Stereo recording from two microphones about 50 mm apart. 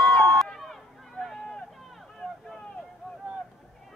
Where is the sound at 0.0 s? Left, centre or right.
Left.